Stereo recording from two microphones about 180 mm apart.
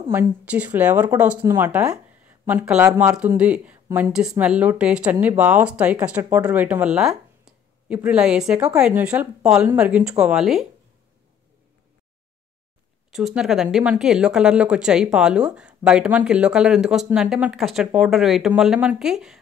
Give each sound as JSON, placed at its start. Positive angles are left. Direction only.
{"t": 0.1, "sound": "a woman's voice", "side_deg": -10}
{"t": 13.1, "sound": "speech", "side_deg": 0}